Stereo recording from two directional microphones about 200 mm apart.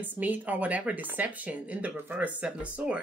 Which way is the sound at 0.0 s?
10° right (ahead or behind).